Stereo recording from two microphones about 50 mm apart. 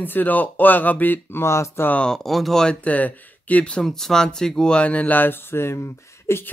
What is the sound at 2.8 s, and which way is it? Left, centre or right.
Speech, left.